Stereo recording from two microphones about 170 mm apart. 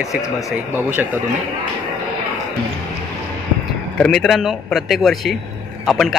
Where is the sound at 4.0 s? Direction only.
Centre (ahead or behind).